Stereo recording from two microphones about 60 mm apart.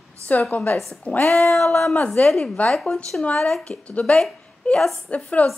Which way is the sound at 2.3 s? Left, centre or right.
Centre.